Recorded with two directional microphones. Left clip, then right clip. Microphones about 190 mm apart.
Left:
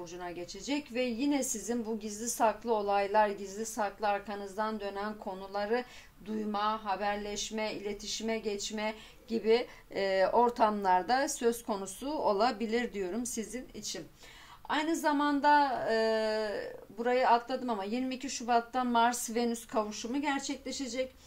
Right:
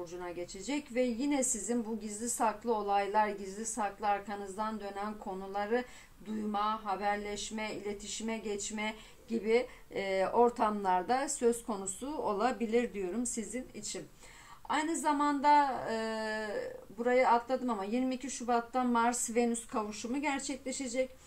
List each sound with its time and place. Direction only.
0.7 s speech: 25° left (ahead or behind)
14.7 s speech: 25° left (ahead or behind)